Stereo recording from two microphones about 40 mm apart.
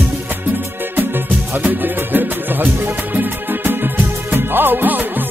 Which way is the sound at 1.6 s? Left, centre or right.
Right.